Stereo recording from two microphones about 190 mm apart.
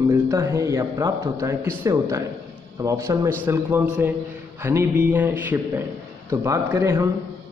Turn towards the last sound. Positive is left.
turn(degrees=-15)  # may be behind; listen again after turning